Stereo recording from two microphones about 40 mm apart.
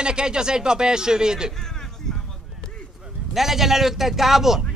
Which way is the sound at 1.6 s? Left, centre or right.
Centre.